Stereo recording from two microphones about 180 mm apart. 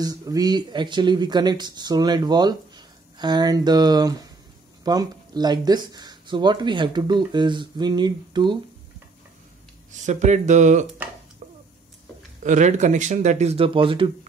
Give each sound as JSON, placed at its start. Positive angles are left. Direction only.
{"t": 0.0, "sound": "speech", "side_deg": -20}
{"t": 10.0, "sound": "speech", "side_deg": -40}
{"t": 12.4, "sound": "speech", "side_deg": -40}